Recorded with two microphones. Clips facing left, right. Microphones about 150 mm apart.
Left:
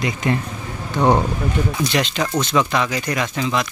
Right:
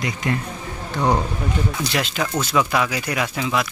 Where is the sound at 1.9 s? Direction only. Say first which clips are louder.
Left 3 dB; 5° right (ahead or behind).